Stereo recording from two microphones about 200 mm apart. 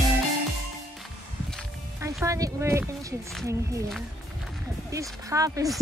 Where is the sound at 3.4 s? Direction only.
15° right (ahead or behind).